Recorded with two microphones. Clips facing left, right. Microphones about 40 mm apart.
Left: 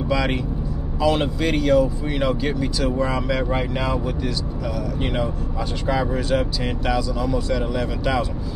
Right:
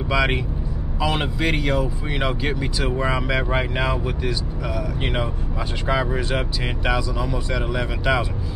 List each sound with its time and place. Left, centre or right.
0.1 s speech: centre